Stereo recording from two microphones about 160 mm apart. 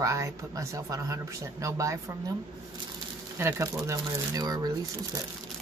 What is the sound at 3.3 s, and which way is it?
Speech, 15° right (ahead or behind).